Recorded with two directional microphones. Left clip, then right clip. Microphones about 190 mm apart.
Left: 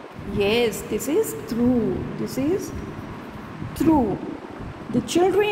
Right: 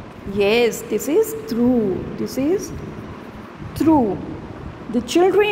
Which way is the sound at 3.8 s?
15° right (ahead or behind).